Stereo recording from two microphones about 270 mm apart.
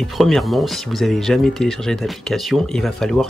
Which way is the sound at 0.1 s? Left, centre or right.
Centre.